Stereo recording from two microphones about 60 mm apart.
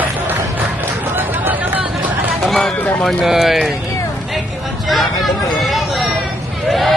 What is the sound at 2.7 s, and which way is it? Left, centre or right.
Speech, left.